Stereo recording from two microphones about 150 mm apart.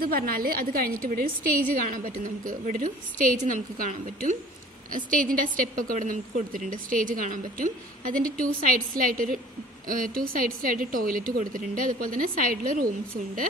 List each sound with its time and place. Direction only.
0.0 s a woman's voice: 75° right (ahead or behind)
1.8 s a woman's voice: 60° right (ahead or behind)